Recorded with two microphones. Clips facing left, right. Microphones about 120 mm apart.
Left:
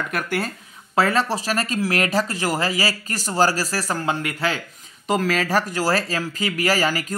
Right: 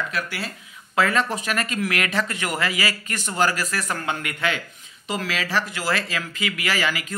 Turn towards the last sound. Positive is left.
turn(degrees=40)  # may be behind; listen again after turning